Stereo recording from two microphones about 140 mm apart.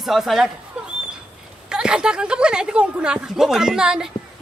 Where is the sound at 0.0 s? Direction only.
Centre (ahead or behind).